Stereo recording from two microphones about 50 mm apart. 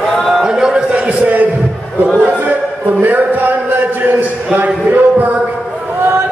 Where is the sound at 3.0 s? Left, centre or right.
Right.